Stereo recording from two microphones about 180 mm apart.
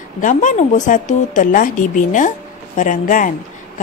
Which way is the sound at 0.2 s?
45° left (ahead or behind).